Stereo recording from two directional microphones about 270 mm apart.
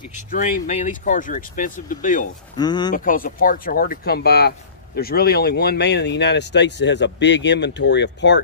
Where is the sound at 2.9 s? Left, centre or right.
Left.